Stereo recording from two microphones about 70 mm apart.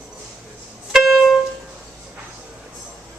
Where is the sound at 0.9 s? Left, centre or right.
Centre.